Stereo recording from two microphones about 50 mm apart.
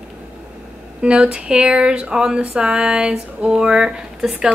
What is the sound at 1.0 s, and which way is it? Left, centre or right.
Speech, right.